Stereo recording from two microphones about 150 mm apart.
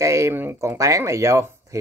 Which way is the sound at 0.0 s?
20° right (ahead or behind).